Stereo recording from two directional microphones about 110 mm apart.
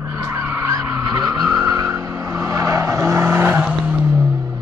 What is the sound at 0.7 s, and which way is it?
Vehicle, 30° right (ahead or behind).